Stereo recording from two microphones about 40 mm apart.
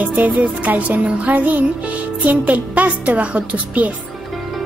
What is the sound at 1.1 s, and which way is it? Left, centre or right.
Speech, right.